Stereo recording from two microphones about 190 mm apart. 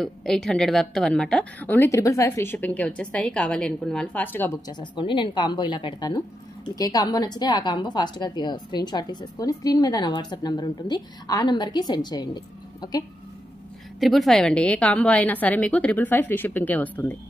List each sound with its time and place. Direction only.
0.0 s a woman's voice: 5° left (ahead or behind); by 13.0 s 20° left (ahead or behind)
13.9 s a woman's voice: centre (ahead or behind)